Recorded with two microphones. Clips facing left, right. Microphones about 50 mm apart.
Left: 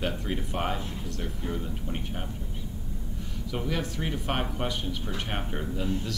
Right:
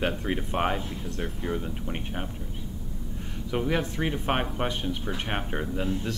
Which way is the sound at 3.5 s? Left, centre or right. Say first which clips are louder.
Right 4 dB; right.